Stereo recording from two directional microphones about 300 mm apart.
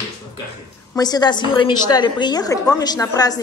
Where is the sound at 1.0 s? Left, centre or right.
Centre.